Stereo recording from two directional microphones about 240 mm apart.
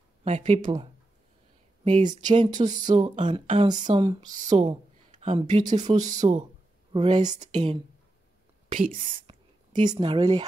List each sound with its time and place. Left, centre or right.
0.2 s speech: right
1.9 s speech: right
4.4 s speech: right